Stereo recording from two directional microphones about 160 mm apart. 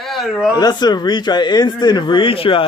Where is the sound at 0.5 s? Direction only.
25° left (ahead or behind).